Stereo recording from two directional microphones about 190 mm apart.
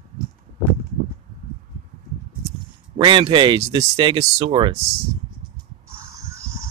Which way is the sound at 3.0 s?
25° right (ahead or behind).